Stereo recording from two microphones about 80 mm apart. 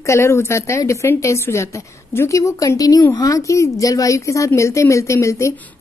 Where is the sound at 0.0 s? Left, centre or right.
Left.